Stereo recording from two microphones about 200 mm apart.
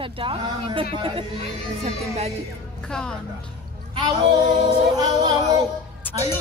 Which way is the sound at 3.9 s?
25° right (ahead or behind).